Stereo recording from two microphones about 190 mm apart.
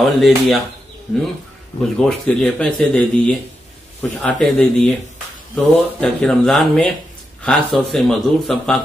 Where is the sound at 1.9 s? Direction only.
5° left (ahead or behind).